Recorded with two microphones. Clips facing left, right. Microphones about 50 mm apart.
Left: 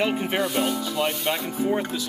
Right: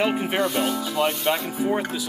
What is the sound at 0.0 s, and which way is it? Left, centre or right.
Speech, centre.